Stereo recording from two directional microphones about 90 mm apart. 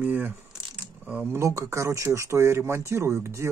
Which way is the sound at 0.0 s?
20° right (ahead or behind).